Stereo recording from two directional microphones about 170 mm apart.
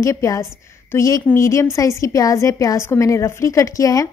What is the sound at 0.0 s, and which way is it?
A woman's voice, 20° left (ahead or behind).